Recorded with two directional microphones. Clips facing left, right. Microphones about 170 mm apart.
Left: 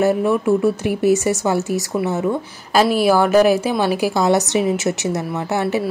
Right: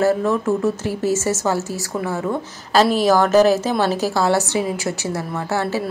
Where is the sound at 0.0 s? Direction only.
15° left (ahead or behind).